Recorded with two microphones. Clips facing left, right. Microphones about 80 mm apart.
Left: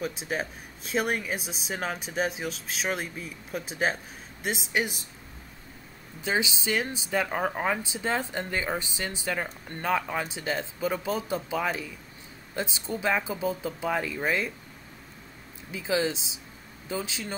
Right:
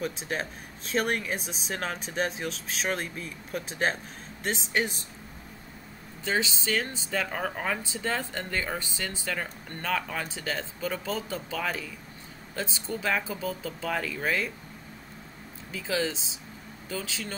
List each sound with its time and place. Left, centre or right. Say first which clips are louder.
0.0 s speech: left 1 dB; centre
6.2 s speech: left 1 dB; centre
15.7 s speech: left 2 dB; centre